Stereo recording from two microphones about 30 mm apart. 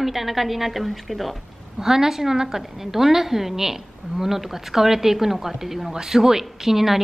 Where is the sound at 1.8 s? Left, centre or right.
Centre.